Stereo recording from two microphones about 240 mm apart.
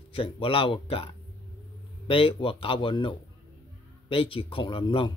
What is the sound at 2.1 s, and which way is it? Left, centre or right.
Speech, left.